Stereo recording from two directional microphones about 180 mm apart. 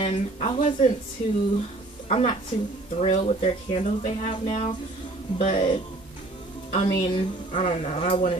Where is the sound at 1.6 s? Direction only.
35° left (ahead or behind).